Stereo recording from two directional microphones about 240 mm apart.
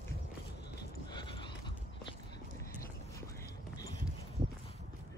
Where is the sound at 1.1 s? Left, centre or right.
Centre.